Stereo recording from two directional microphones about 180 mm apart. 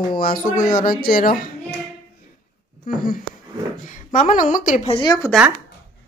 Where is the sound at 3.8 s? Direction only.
45° left (ahead or behind).